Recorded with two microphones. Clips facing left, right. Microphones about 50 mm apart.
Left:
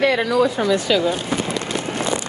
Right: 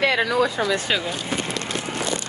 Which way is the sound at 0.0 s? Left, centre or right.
Right.